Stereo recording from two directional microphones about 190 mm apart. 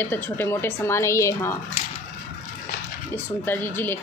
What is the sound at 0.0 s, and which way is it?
A woman's voice, 10° left (ahead or behind).